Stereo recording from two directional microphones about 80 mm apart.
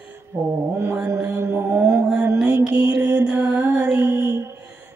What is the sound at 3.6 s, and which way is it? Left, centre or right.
Music, right.